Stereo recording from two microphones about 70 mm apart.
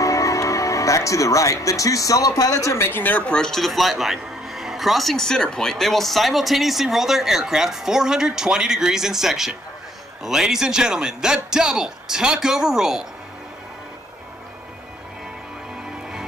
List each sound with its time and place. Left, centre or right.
0.0 s speech: left
2.9 s speech: left
3.3 s a man's voice: centre